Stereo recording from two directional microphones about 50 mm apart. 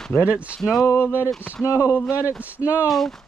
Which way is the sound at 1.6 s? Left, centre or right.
Left.